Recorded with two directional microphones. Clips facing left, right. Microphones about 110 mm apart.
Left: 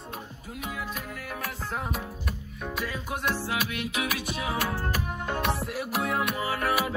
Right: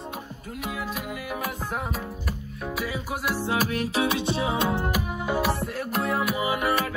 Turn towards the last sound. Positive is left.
turn(degrees=-15)  # may be behind; listen again after turning